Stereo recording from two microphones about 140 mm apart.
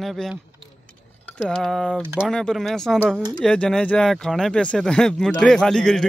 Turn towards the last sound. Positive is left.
turn(degrees=5)  # may be behind; listen again after turning